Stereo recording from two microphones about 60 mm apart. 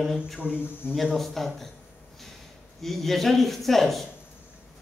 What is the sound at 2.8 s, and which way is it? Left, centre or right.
A man's voice, centre.